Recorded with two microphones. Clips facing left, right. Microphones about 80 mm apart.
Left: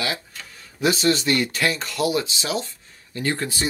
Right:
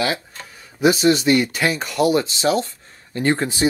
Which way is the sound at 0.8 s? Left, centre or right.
Centre.